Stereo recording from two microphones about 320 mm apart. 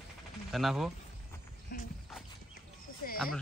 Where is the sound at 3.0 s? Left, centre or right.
Left.